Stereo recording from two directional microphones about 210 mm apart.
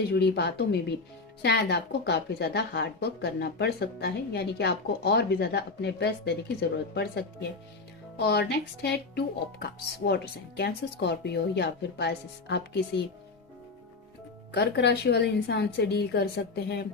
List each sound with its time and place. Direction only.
0.1 s speech: 50° left (ahead or behind)
14.5 s speech: 50° left (ahead or behind)